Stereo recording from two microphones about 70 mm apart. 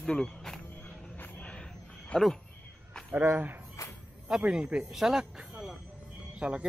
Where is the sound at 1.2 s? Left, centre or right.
Centre.